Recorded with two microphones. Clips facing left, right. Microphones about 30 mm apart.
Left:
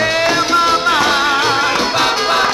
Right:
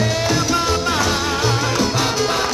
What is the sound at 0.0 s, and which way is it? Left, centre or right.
Music, left.